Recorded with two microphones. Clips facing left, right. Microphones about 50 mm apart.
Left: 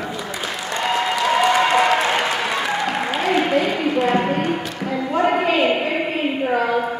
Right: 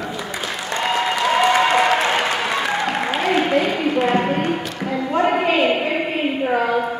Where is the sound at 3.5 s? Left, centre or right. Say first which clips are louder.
Even; centre.